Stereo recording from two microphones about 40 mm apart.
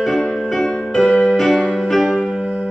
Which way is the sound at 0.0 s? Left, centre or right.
Centre.